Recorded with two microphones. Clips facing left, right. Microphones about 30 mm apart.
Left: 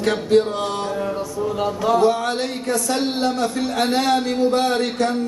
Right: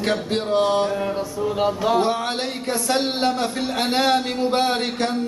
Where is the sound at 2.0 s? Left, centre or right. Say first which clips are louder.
Left 3 dB; right.